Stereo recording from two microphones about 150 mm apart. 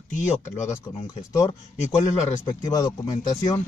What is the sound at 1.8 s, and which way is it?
Speech, 55° left (ahead or behind).